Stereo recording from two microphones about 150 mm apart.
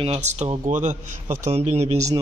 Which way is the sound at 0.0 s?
45° right (ahead or behind).